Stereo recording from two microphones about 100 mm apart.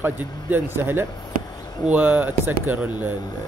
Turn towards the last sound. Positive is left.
turn(degrees=-20)  # may be behind; listen again after turning